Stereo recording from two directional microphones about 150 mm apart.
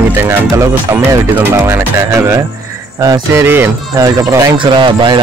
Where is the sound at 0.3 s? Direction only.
15° right (ahead or behind).